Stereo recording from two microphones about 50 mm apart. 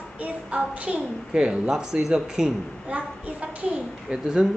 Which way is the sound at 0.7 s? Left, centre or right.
Right.